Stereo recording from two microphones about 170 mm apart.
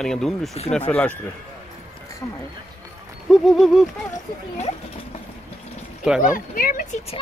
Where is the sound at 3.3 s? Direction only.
Centre (ahead or behind).